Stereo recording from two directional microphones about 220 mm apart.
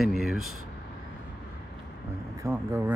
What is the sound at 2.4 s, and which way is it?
Speech, 10° right (ahead or behind).